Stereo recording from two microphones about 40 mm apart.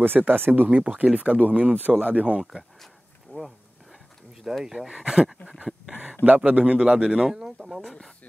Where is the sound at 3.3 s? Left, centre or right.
Left.